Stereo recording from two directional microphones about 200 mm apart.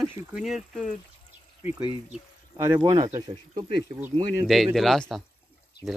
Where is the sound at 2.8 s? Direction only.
20° right (ahead or behind).